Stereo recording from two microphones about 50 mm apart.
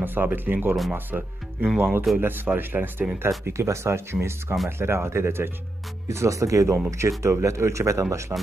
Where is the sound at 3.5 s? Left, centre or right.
Right.